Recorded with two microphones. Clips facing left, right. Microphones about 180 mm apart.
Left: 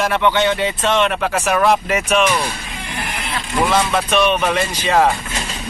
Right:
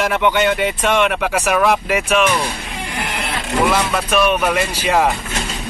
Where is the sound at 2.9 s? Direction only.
75° right (ahead or behind).